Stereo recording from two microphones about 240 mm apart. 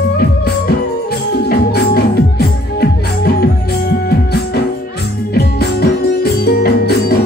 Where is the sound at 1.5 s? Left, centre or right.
Left.